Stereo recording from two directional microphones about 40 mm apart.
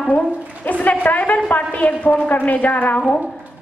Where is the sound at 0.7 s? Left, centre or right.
Left.